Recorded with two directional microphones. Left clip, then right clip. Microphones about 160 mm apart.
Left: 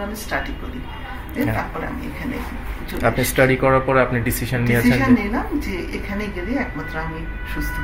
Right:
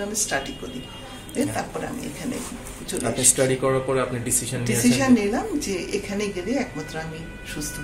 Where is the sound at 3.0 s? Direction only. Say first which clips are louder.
Left 5 dB; 40° left (ahead or behind).